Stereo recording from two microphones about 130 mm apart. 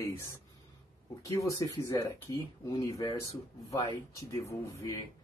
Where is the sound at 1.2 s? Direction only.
25° left (ahead or behind).